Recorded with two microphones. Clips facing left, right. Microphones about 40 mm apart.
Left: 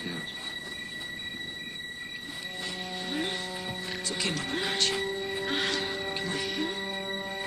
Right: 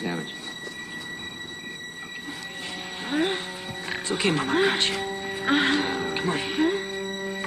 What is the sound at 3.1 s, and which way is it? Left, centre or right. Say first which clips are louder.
Speech: right 8 dB; right.